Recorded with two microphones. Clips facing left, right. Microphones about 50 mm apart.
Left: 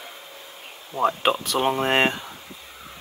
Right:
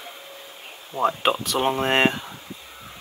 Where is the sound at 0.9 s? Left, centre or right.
Centre.